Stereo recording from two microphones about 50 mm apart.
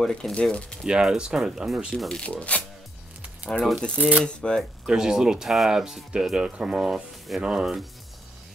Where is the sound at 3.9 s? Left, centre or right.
Right.